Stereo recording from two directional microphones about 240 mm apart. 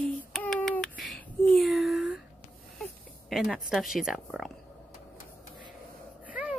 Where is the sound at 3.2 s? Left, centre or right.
Centre.